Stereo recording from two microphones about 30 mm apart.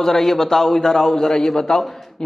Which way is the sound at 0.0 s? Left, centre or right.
Centre.